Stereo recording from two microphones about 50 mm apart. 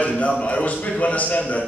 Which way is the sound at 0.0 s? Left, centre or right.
Left.